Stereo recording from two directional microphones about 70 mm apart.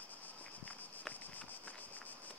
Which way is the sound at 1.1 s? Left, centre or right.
Left.